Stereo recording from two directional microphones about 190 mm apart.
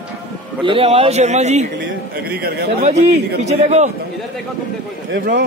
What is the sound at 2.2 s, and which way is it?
Speech, 55° right (ahead or behind).